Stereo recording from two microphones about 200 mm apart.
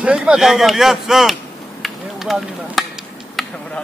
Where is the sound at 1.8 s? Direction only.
Centre (ahead or behind).